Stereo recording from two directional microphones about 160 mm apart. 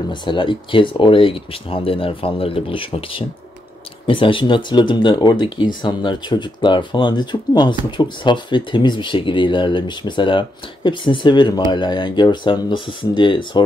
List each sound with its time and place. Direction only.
0.1 s speech: 30° left (ahead or behind)